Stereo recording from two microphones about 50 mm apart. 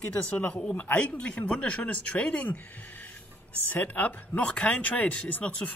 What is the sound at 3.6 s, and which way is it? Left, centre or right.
Speech, left.